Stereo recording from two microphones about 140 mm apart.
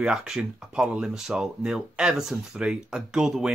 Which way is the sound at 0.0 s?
5° right (ahead or behind).